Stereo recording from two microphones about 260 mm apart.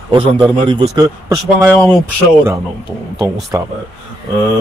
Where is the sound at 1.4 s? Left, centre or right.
Centre.